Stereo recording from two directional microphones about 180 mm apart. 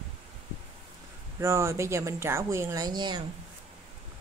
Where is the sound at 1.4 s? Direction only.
15° right (ahead or behind).